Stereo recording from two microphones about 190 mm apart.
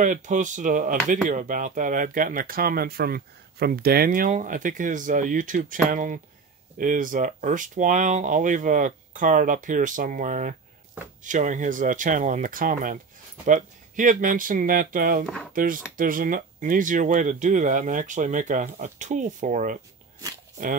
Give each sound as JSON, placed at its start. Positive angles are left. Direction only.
{"t": 0.0, "sound": "speech", "side_deg": -40}